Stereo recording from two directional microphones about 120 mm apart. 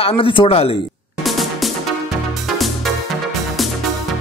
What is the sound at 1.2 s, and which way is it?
Music, centre (ahead or behind).